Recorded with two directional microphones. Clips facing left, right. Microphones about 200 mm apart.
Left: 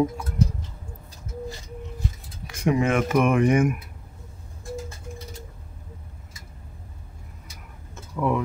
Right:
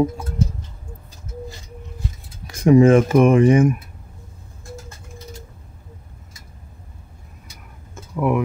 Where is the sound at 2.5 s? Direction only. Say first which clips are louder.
Right 10 dB; 35° right (ahead or behind).